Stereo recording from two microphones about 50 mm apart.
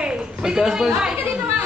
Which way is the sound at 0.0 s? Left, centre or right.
Centre.